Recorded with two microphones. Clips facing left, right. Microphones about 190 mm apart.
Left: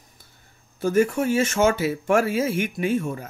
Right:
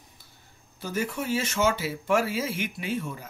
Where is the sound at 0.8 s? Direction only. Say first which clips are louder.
Left 10 dB; 50° left (ahead or behind).